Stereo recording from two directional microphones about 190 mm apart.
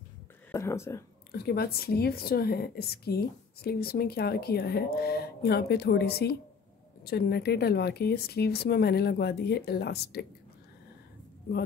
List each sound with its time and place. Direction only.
0.5 s speech: 15° left (ahead or behind)
1.3 s speech: 55° left (ahead or behind)